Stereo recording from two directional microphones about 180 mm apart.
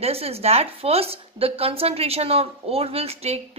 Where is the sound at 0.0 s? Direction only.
35° right (ahead or behind).